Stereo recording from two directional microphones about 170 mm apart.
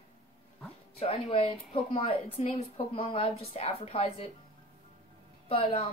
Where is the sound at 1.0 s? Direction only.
35° left (ahead or behind).